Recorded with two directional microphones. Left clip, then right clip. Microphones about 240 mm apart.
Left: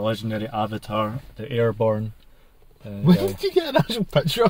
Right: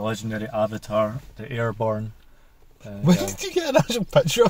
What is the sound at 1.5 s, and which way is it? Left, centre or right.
Speech, left.